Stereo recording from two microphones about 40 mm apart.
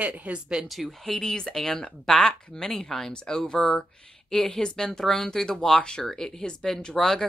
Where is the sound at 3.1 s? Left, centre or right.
Left.